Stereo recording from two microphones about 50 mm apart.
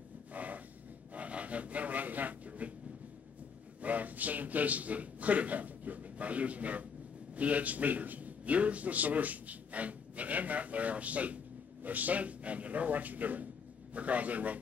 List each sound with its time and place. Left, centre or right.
0.3 s snort: right
1.1 s speech: right
3.8 s a man's voice: right